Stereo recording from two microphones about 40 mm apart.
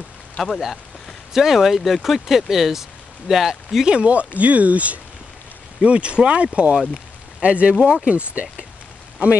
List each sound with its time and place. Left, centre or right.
0.4 s speech: left
1.3 s speech: centre
3.8 s speech: right
6.8 s rain on surface: centre
7.4 s speech: right
8.1 s speech: right